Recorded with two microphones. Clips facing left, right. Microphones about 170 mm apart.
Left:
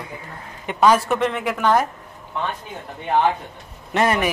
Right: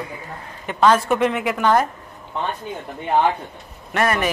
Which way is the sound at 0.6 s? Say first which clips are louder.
Even; 10° left (ahead or behind).